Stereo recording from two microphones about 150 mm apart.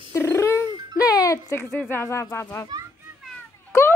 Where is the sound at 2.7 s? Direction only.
25° right (ahead or behind).